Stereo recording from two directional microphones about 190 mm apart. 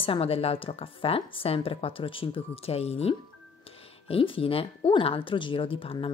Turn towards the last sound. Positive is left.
turn(degrees=30)  # may be behind; listen again after turning